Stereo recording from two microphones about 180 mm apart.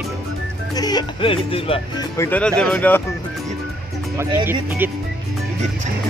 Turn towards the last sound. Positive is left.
turn(degrees=-10)  # may be behind; listen again after turning